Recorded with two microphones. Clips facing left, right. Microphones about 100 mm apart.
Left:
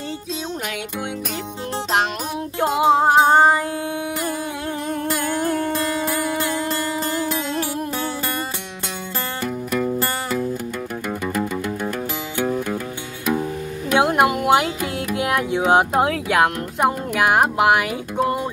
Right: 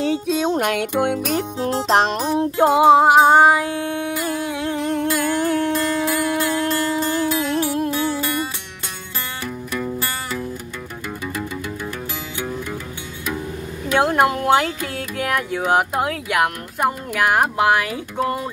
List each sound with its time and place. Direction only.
0.0 s music: 65° right (ahead or behind)
1.9 s music: 40° right (ahead or behind)
2.5 s music: 20° right (ahead or behind); by 5.6 s 5° left (ahead or behind)
13.9 s carnatic music: 15° left (ahead or behind)